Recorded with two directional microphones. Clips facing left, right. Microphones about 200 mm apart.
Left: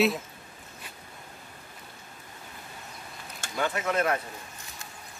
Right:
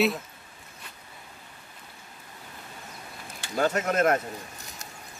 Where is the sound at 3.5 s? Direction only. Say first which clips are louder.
Right 3 dB; 40° right (ahead or behind).